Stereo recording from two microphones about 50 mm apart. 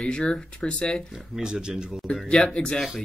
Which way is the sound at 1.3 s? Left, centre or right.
Centre.